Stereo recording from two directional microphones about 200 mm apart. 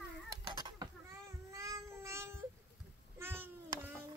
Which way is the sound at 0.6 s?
20° right (ahead or behind).